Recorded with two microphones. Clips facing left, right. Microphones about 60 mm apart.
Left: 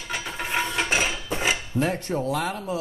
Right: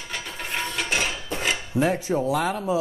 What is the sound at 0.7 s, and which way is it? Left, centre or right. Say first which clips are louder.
Dishes: left 2 dB; centre.